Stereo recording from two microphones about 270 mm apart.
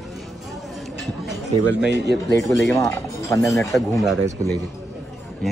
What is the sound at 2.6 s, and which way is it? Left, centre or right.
Speech, centre.